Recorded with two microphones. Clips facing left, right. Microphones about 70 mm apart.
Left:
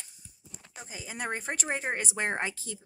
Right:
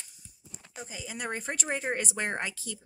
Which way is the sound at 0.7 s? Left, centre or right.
Left.